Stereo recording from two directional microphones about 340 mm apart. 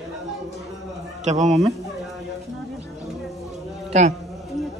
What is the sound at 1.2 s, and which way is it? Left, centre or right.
Speech, centre.